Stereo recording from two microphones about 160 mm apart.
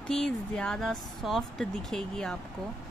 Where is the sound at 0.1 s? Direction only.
5° left (ahead or behind).